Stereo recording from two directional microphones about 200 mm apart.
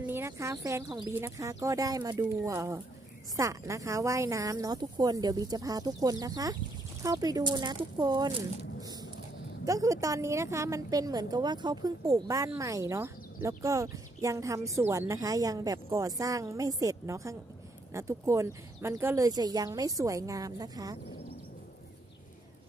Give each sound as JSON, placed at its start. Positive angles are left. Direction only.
{"t": 0.0, "sound": "speech", "side_deg": -10}
{"t": 9.7, "sound": "speech", "side_deg": -15}